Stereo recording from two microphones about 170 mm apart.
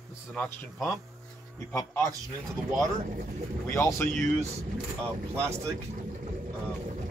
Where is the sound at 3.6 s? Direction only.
15° left (ahead or behind).